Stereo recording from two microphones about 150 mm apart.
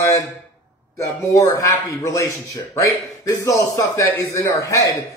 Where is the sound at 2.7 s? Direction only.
20° left (ahead or behind).